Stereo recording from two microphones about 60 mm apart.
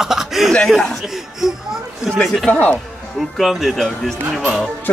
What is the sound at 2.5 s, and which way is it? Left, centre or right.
Speech, left.